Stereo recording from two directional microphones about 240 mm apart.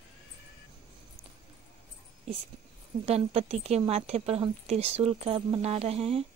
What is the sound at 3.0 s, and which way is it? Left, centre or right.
A woman's voice, right.